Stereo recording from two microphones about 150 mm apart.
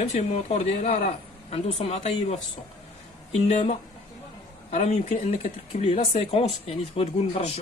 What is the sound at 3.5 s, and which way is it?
Speech, 50° left (ahead or behind).